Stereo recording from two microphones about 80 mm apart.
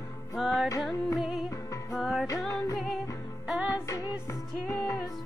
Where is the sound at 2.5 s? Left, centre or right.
Left.